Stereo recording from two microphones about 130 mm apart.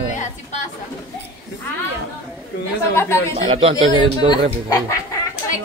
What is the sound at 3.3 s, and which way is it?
Speech, 45° right (ahead or behind).